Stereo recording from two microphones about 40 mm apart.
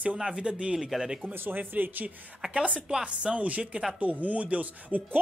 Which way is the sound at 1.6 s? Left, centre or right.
Right.